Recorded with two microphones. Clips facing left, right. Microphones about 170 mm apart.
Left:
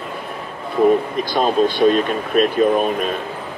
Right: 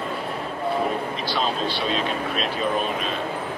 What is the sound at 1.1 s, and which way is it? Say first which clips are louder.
Speech: left 8 dB; 50° left (ahead or behind).